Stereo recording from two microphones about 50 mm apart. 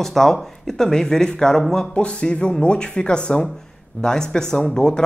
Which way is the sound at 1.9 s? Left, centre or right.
Left.